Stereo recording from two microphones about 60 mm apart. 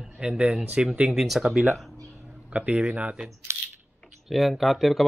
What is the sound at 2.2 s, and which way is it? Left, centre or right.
Speech, right.